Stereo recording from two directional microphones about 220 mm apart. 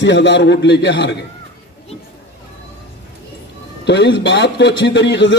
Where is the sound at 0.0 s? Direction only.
55° left (ahead or behind).